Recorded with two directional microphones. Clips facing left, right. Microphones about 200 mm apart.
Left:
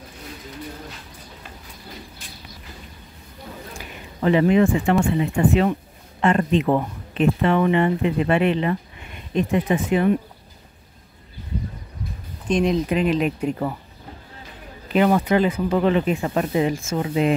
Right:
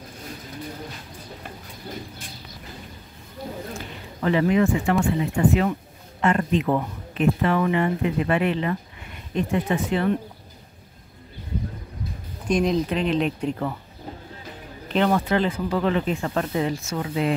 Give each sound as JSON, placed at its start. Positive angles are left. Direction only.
{"t": 3.7, "sound": "a sound", "side_deg": 20}
{"t": 5.5, "sound": "speech", "side_deg": 25}
{"t": 12.4, "sound": "speech", "side_deg": -5}
{"t": 14.9, "sound": "speech", "side_deg": 10}